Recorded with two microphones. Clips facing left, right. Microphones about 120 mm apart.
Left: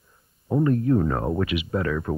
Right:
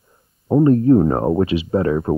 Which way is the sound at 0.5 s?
30° right (ahead or behind).